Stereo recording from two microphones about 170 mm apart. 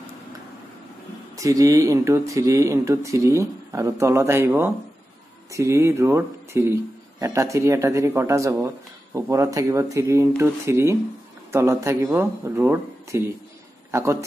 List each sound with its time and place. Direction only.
1.3 s speech: 20° right (ahead or behind)